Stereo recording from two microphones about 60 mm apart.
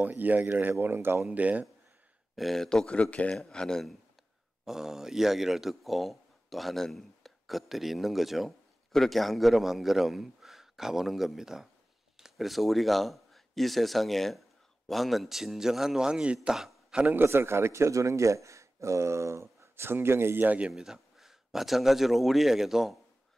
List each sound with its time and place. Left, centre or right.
0.0 s speech: right
1.3 s speech: right
2.3 s speech: centre
3.0 s speech: left
3.3 s speech: centre
4.6 s a man's voice: centre
17.1 s a man's voice: right
20.4 s speech: right
20.7 s a man's voice: centre